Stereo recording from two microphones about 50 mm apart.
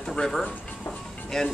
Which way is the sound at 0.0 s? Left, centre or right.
Centre.